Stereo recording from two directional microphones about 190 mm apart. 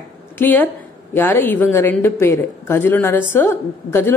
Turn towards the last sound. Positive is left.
turn(degrees=10)  # may be behind; listen again after turning